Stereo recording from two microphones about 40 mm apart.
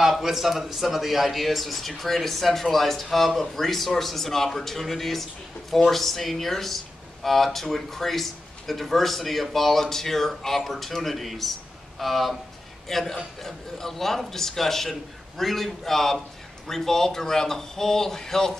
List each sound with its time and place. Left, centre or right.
0.0 s a man's voice: centre